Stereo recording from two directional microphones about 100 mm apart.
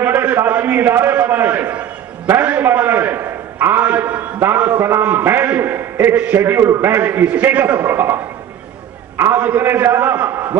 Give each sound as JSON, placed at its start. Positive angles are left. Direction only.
{"t": 0.0, "sound": "a man's voice", "side_deg": -20}